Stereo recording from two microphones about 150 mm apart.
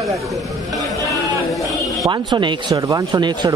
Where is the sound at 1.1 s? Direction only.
Centre (ahead or behind).